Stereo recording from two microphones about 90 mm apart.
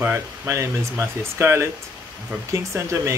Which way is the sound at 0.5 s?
30° right (ahead or behind).